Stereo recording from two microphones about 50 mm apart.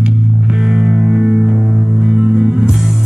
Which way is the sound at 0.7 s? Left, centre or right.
Centre.